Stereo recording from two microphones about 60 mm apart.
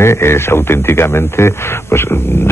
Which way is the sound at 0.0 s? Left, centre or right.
Left.